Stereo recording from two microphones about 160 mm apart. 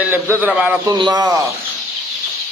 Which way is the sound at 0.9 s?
25° right (ahead or behind).